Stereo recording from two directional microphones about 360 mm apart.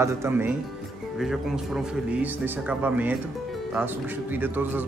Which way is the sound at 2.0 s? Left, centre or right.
Centre.